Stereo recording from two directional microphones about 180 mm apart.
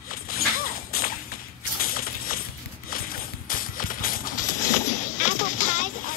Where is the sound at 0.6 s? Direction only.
55° left (ahead or behind).